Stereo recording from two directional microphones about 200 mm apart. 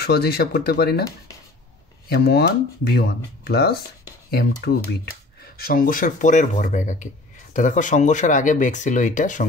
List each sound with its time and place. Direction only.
0.0 s speech: 50° left (ahead or behind)
2.0 s speech: 55° left (ahead or behind)